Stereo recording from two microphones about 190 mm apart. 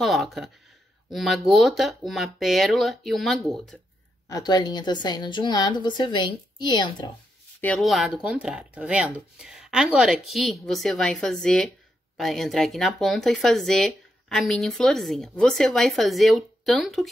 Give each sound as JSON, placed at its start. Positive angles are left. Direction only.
{"t": 0.0, "sound": "speech", "side_deg": 0}
{"t": 4.3, "sound": "a woman's voice", "side_deg": 20}
{"t": 7.6, "sound": "speech", "side_deg": 0}